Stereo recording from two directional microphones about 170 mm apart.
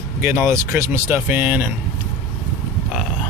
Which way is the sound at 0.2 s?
15° right (ahead or behind).